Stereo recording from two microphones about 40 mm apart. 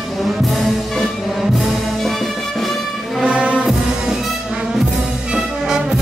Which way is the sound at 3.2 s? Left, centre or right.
Right.